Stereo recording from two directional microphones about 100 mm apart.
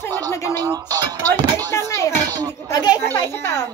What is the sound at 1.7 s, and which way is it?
Speech, 30° left (ahead or behind).